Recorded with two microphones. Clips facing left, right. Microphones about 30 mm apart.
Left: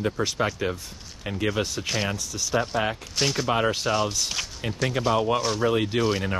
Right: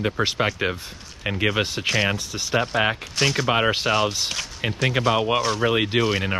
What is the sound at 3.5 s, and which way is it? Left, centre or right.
Speech, right.